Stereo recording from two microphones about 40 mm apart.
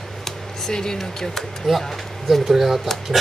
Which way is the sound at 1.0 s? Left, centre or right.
Centre.